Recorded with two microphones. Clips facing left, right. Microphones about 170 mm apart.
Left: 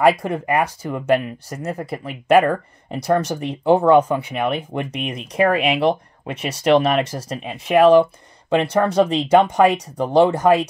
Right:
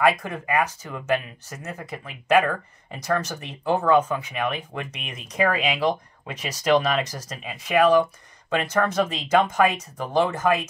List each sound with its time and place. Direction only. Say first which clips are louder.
0.0 s speech: left 5 dB; 35° left (ahead or behind)